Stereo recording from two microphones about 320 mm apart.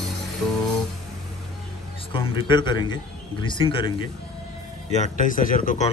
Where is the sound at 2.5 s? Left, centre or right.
Centre.